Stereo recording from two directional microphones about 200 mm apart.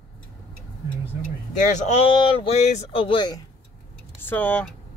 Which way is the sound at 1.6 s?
35° left (ahead or behind).